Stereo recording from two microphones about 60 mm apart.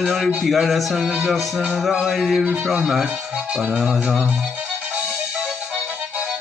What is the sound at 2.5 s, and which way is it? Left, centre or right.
Speech, right.